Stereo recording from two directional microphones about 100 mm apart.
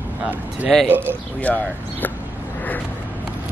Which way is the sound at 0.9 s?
20° right (ahead or behind).